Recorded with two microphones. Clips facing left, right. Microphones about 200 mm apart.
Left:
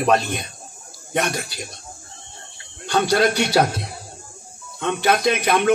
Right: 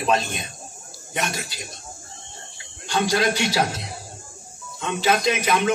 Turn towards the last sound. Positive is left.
turn(degrees=60)  # may be behind; listen again after turning